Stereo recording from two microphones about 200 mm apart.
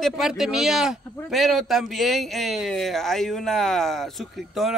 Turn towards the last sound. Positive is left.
turn(degrees=0)  # may be behind; listen again after turning